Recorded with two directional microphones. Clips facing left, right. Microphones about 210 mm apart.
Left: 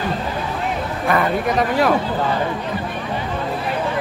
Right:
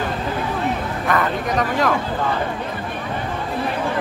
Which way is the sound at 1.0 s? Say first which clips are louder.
Left 2 dB; 10° left (ahead or behind).